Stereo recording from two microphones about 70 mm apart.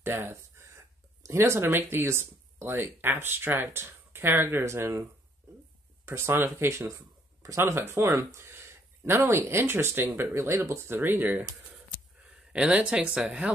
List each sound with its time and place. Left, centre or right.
0.0 s speech: right
6.0 s speech: right
12.2 s speech: centre